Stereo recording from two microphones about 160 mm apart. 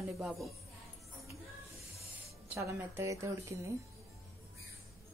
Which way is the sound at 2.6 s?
15° right (ahead or behind).